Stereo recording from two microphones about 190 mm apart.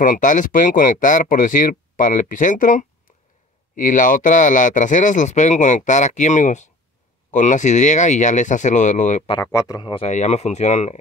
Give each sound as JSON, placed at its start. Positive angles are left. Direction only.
{"t": 0.0, "sound": "speech", "side_deg": 45}
{"t": 9.4, "sound": "speech", "side_deg": 15}
{"t": 10.0, "sound": "speech", "side_deg": 35}